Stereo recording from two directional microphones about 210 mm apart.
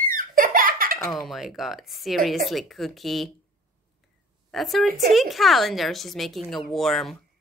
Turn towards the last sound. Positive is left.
turn(degrees=0)  # may be behind; listen again after turning